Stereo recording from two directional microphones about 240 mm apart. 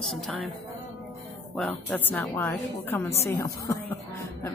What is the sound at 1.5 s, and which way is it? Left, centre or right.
A woman's voice, centre.